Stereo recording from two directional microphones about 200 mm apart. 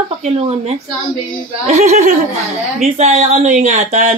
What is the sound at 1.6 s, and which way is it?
Speech, 35° right (ahead or behind).